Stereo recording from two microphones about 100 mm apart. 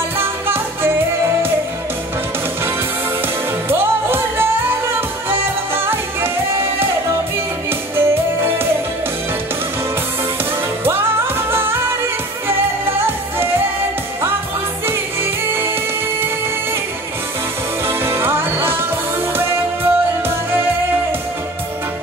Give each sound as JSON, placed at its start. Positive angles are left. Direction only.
{"t": 0.2, "sound": "music", "side_deg": -20}
{"t": 3.6, "sound": "music", "side_deg": -25}
{"t": 10.8, "sound": "music", "side_deg": -25}
{"t": 15.5, "sound": "music", "side_deg": -20}
{"t": 17.8, "sound": "music", "side_deg": -25}